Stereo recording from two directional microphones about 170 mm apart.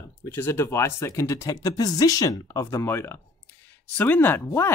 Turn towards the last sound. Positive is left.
turn(degrees=15)  # may be behind; listen again after turning